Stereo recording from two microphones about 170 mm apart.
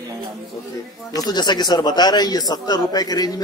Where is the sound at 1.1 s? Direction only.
25° left (ahead or behind).